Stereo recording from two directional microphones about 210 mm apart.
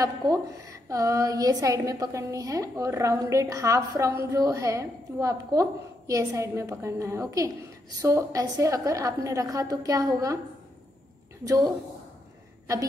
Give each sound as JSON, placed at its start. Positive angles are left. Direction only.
{"t": 0.0, "sound": "a woman's voice", "side_deg": -15}
{"t": 11.4, "sound": "a woman's voice", "side_deg": -15}